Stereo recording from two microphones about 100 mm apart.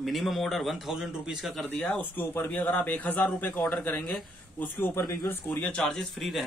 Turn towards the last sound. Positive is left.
turn(degrees=0)  # may be behind; listen again after turning